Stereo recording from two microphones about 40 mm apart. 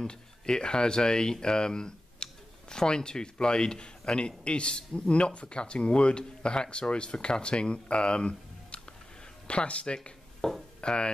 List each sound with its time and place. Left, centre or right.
0.0 s speech: left
10.4 s speech: centre
10.8 s speech: left